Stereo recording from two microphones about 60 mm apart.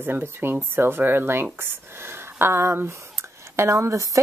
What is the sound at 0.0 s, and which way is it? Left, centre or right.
A woman's voice, right.